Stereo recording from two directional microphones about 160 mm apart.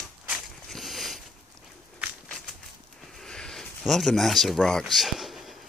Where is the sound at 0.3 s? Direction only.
Centre (ahead or behind).